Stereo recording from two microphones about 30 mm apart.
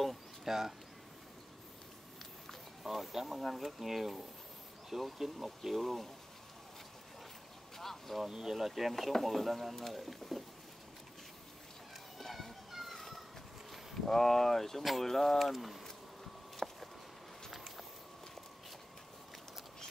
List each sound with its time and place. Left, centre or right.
0.5 s speech: centre
2.8 s speech: centre
7.7 s vehicle: centre
8.3 s speech: centre
8.6 s speech: centre
12.2 s children playing: centre
14.0 s speech: centre
14.8 s speech: centre
15.0 s speech: centre
16.5 s a sound: centre